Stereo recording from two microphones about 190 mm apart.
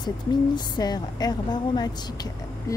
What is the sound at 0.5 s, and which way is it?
A woman's voice, 20° left (ahead or behind).